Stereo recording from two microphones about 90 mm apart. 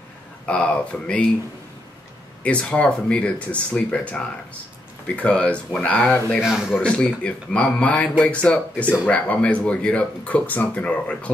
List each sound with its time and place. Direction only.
0.5 s speech: 15° left (ahead or behind)
2.4 s speech: 15° left (ahead or behind)
6.4 s a man's voice: 5° right (ahead or behind)
6.8 s speech: 10° left (ahead or behind)